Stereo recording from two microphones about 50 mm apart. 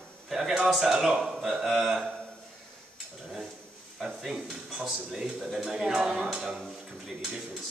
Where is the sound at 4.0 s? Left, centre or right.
Centre.